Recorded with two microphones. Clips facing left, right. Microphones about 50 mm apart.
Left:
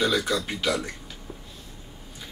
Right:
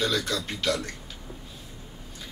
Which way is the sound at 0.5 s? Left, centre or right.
Centre.